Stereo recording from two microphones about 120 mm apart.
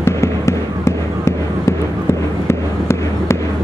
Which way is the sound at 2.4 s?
25° left (ahead or behind).